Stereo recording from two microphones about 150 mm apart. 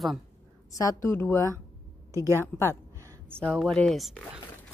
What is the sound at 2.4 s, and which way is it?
Speech, 15° left (ahead or behind).